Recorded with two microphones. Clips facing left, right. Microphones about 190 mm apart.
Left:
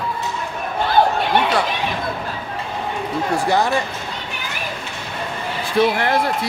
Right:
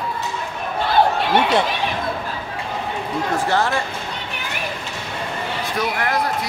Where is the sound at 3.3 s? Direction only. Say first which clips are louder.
Left 2 dB; 15° left (ahead or behind).